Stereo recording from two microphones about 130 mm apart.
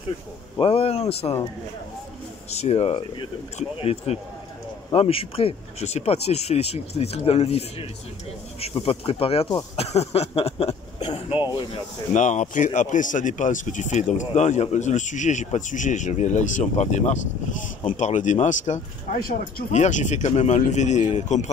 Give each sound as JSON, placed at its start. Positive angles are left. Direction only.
{"t": 0.6, "sound": "speech", "side_deg": 45}
{"t": 2.5, "sound": "speech", "side_deg": 55}
{"t": 12.1, "sound": "speech", "side_deg": 70}